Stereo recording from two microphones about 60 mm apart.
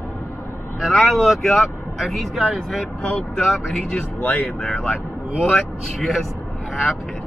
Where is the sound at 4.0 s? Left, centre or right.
Left.